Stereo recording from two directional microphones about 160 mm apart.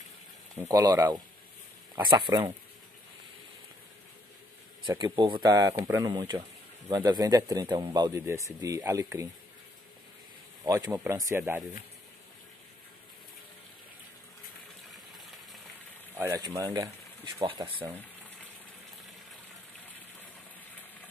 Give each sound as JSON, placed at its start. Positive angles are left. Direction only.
{"t": 0.6, "sound": "speech", "side_deg": -20}
{"t": 4.8, "sound": "speech", "side_deg": -25}
{"t": 10.6, "sound": "speech", "side_deg": -20}
{"t": 14.9, "sound": "gush", "side_deg": 0}
{"t": 16.3, "sound": "speech", "side_deg": -20}